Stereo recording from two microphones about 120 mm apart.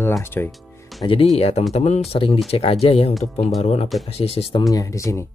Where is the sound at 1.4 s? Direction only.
60° left (ahead or behind).